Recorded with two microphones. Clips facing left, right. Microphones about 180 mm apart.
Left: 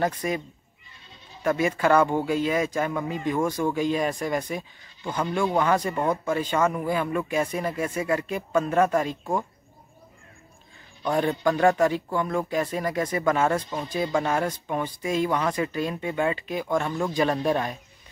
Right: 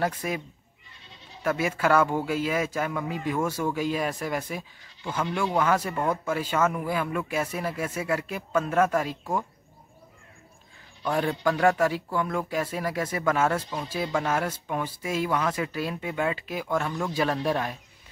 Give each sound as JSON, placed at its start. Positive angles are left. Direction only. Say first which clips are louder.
{"t": 0.0, "sound": "speech", "louder": "left 2 dB", "side_deg": -5}
{"t": 1.4, "sound": "speech", "louder": "left 3 dB", "side_deg": -5}
{"t": 11.1, "sound": "speech", "louder": "left 3 dB", "side_deg": -5}